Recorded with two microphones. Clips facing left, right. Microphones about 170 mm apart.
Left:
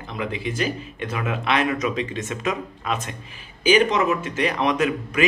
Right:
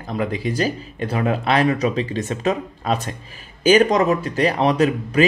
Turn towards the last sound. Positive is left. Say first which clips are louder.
# right 4 dB
turn(degrees=-30)  # may be behind; listen again after turning